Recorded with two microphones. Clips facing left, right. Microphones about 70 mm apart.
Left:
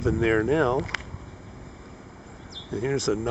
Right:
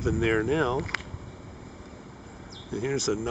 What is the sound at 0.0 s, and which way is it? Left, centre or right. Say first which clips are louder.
Speech: left 3 dB; left.